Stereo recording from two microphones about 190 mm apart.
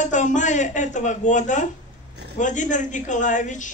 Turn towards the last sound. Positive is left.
turn(degrees=40)  # may be behind; listen again after turning